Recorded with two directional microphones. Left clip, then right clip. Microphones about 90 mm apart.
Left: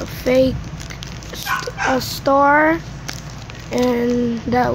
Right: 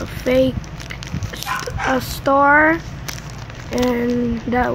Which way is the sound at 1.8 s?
10° left (ahead or behind).